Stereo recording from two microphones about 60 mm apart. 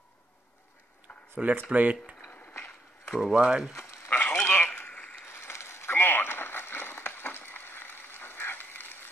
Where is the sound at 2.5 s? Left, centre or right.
Left.